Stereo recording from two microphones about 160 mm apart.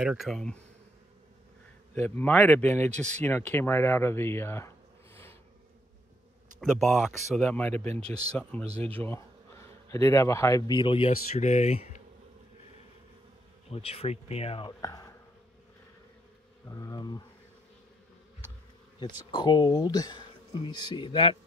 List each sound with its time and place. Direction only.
0.0 s speech: centre (ahead or behind)
2.0 s speech: 10° left (ahead or behind)
6.6 s speech: centre (ahead or behind)
8.6 s speech: 40° right (ahead or behind)
8.9 s speech: 10° left (ahead or behind); by 12.0 s 45° left (ahead or behind)
13.7 s speech: 40° left (ahead or behind)
14.8 s speech: 20° left (ahead or behind)
16.7 s speech: 20° left (ahead or behind)
18.9 s speech: 30° left (ahead or behind)